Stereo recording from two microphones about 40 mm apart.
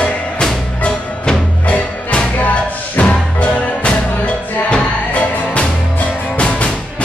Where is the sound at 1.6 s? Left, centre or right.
Left.